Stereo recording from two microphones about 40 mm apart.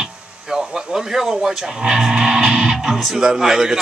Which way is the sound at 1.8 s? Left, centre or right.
Centre.